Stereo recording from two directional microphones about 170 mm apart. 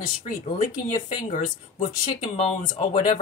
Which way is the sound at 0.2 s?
45° left (ahead or behind).